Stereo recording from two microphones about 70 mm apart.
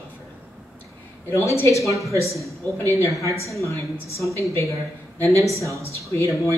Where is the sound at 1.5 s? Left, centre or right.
Left.